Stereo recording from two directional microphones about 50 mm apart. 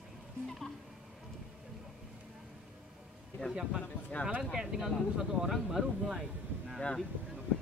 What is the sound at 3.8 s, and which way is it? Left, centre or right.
Speech, left.